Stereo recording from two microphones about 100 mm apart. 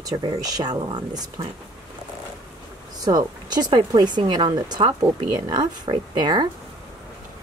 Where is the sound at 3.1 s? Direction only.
40° right (ahead or behind).